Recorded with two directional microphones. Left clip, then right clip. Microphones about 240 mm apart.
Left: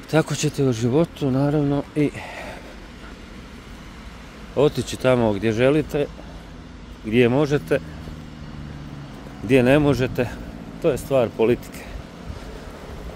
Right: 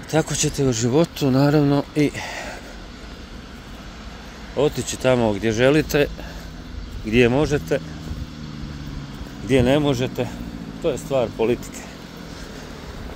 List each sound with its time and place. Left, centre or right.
0.1 s speech: centre
4.6 s speech: left; by 6.0 s centre
7.1 s speech: centre
9.5 s speech: left